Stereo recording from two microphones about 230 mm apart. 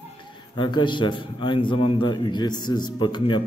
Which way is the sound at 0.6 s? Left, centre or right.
Left.